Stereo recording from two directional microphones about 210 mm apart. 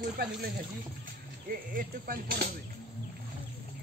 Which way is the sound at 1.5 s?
40° right (ahead or behind).